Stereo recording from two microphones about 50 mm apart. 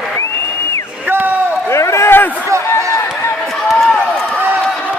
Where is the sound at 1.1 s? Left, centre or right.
Right.